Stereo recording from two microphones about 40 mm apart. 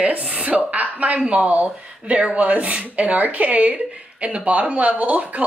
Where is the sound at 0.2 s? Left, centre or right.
Right.